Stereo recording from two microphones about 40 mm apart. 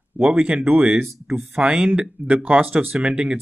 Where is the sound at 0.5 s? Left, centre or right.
Right.